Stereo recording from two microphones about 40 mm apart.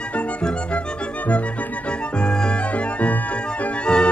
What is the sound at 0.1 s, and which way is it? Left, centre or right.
Music, left.